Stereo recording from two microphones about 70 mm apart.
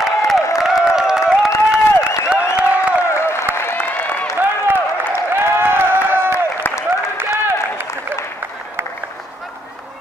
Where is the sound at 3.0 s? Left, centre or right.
Left.